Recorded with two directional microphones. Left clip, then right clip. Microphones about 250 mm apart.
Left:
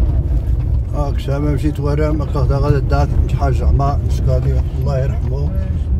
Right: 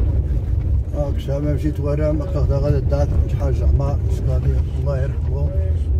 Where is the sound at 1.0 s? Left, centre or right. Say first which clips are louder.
Left 2 dB; left.